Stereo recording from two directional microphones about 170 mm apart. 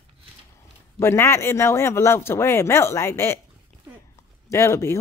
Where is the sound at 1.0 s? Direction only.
15° left (ahead or behind).